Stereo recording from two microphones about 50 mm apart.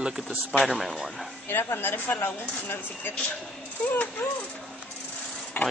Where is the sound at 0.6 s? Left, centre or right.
Centre.